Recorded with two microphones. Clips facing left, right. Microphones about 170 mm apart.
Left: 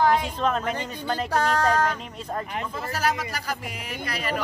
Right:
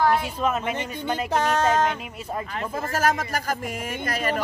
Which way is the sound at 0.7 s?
20° right (ahead or behind).